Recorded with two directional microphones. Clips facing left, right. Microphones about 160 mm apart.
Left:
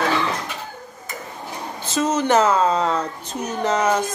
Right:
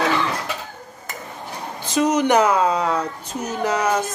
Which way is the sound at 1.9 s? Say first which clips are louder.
Right 2 dB; 15° right (ahead or behind).